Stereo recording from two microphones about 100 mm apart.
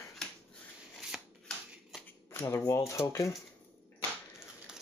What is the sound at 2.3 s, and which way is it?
Speech, 25° left (ahead or behind).